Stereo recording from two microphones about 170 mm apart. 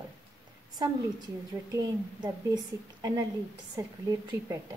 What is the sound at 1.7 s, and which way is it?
A woman's voice, 20° right (ahead or behind).